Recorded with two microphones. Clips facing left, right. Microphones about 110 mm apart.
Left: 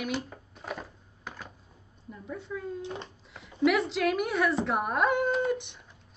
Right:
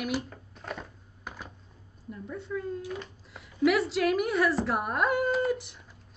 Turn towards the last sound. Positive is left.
turn(degrees=0)  # may be behind; listen again after turning